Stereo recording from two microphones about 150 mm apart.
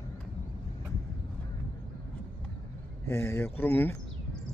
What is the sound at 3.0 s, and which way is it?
Speech, 15° left (ahead or behind).